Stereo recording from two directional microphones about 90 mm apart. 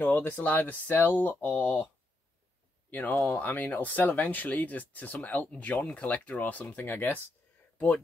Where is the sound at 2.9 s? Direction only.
20° left (ahead or behind).